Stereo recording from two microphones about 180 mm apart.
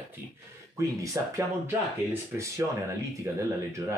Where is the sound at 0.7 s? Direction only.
15° right (ahead or behind).